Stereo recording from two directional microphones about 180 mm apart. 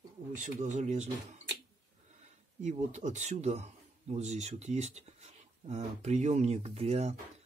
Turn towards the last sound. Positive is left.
turn(degrees=-35)  # may be behind; listen again after turning